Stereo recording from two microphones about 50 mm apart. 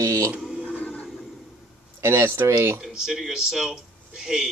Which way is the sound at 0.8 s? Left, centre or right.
Left.